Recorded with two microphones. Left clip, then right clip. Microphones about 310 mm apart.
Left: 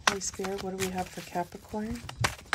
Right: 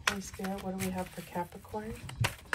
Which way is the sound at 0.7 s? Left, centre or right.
Left.